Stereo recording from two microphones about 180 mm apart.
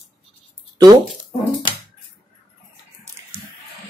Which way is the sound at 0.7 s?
20° right (ahead or behind).